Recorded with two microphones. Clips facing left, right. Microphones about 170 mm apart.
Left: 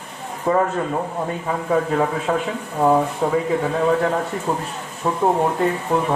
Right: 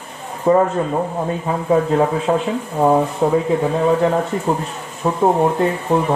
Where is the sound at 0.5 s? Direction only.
25° right (ahead or behind).